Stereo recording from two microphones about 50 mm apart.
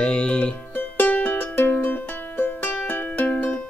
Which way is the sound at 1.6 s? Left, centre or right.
Left.